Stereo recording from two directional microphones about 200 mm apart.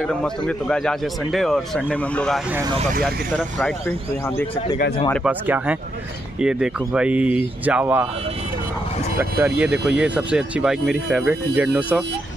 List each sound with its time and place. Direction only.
0.0 s a man's voice: 5° left (ahead or behind)
5.1 s a man's voice: 5° right (ahead or behind)
9.2 s speech: 10° right (ahead or behind)